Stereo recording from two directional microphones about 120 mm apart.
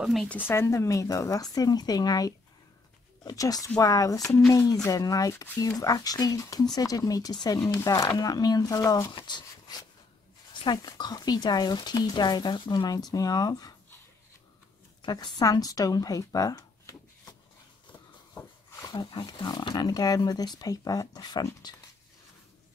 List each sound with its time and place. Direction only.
0.5 s speech: 25° left (ahead or behind)
5.3 s speech: 20° left (ahead or behind)
5.8 s speech: 30° left (ahead or behind)
15.0 s speech: 35° left (ahead or behind)
18.3 s a sound: 25° left (ahead or behind)
18.9 s speech: 40° left (ahead or behind)